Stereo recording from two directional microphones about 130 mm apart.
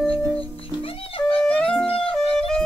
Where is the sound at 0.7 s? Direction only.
45° left (ahead or behind).